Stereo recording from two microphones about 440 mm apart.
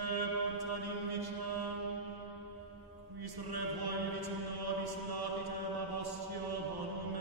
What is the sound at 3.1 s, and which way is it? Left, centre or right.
Mantra, right.